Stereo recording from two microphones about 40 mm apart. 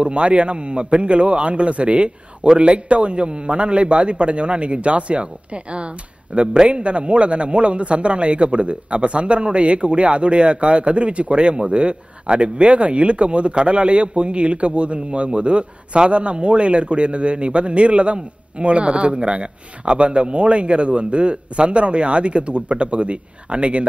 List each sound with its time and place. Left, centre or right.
0.0 s a man's voice: right